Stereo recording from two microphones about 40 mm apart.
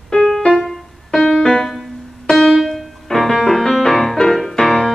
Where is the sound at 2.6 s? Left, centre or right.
Centre.